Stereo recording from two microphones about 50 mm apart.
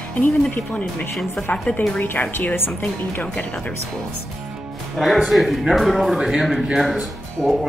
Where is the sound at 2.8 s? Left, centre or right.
Left.